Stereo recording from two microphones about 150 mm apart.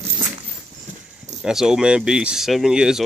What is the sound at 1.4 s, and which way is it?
Speech, 5° right (ahead or behind).